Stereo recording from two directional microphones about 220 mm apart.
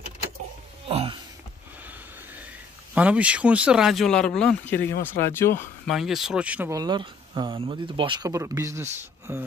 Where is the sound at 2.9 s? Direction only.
5° right (ahead or behind); by 5.9 s 10° left (ahead or behind).